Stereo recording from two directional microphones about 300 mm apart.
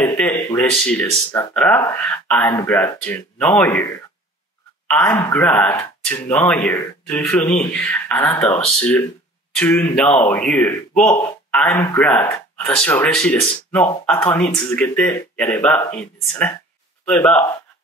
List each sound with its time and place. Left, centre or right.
0.0 s speech: centre
4.8 s speech: centre